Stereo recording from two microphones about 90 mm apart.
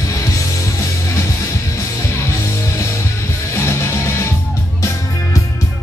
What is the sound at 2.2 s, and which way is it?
Music, 30° left (ahead or behind).